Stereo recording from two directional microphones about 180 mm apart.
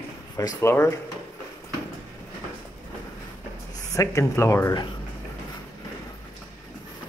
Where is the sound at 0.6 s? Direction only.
15° left (ahead or behind).